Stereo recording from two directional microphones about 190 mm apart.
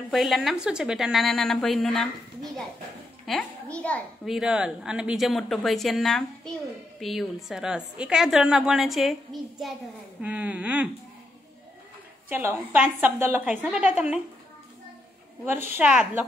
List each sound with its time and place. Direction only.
0.1 s a child's voice: centre (ahead or behind)
3.3 s a child's voice: 5° left (ahead or behind)
10.2 s a woman's voice: 5° right (ahead or behind)
12.3 s a woman's voice: 10° right (ahead or behind)
15.7 s a child's voice: 5° right (ahead or behind)